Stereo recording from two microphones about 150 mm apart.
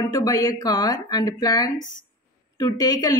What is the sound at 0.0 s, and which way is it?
Speech, 25° left (ahead or behind).